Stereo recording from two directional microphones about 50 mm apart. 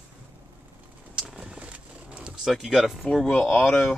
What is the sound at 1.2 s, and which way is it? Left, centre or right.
Vehicle, centre.